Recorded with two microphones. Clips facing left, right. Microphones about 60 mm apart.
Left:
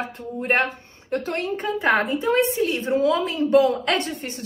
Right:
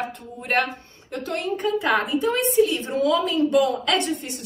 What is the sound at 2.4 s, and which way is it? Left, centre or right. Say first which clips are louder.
Speech: right 1 dB; left.